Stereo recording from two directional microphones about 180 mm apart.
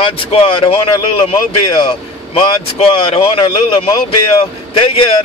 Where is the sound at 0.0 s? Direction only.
30° left (ahead or behind).